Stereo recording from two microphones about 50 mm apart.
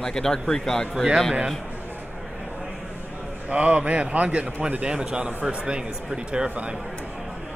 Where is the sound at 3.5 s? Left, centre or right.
Right.